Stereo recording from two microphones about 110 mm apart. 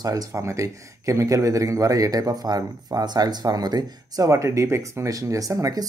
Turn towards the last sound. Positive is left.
turn(degrees=-35)  # may be behind; listen again after turning